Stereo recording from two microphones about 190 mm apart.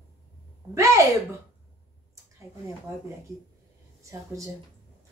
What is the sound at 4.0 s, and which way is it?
Speech, 15° right (ahead or behind).